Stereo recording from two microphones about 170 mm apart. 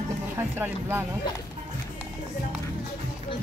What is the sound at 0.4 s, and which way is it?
Speech, 15° right (ahead or behind).